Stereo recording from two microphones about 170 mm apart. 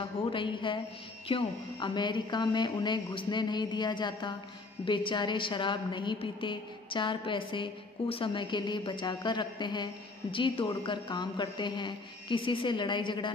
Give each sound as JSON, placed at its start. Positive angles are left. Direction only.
{"t": 0.0, "sound": "a woman's voice", "side_deg": 30}